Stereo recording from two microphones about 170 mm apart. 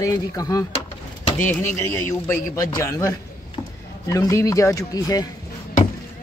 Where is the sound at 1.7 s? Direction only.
15° left (ahead or behind).